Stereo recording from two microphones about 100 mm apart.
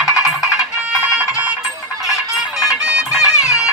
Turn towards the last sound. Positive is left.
turn(degrees=35)  # may be behind; listen again after turning